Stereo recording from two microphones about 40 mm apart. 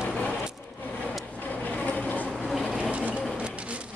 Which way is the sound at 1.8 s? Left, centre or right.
Left.